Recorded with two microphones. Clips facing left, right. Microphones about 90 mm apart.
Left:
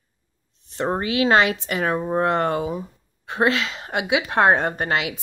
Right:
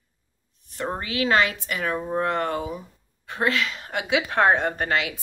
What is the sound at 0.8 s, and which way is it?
Speech, 30° left (ahead or behind).